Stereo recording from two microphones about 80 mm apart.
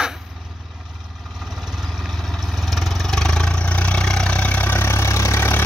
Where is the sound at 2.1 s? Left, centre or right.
Centre.